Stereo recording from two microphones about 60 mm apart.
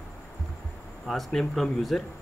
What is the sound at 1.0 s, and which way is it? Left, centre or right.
Speech, centre.